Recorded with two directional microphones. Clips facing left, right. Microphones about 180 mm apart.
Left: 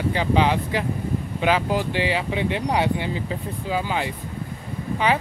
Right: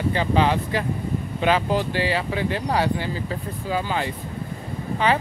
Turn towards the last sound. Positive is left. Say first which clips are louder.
# even
turn(degrees=10)  # may be behind; listen again after turning